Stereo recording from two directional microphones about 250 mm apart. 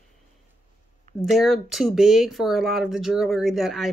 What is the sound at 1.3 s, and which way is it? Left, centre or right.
Speech, centre.